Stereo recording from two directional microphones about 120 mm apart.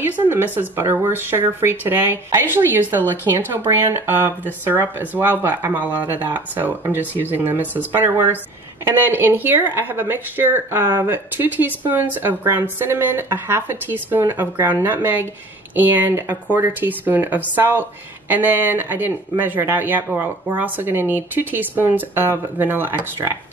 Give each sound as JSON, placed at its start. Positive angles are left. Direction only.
{"t": 0.1, "sound": "speech", "side_deg": -15}